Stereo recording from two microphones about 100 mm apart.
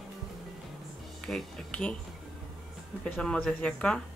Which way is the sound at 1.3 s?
5° left (ahead or behind).